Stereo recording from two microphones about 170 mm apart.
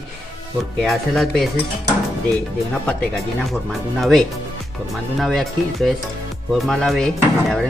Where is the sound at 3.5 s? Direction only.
Centre (ahead or behind).